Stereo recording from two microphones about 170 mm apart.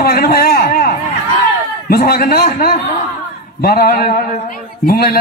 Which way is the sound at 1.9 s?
60° left (ahead or behind).